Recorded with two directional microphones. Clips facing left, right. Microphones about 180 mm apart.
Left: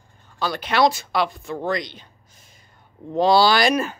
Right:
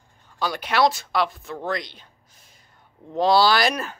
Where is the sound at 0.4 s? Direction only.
10° right (ahead or behind).